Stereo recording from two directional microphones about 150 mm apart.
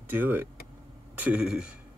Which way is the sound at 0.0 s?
10° right (ahead or behind).